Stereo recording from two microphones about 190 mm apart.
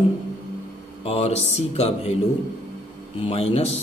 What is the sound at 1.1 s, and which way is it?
Speech, 30° left (ahead or behind).